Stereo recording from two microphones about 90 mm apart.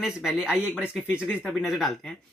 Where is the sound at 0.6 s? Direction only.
15° right (ahead or behind).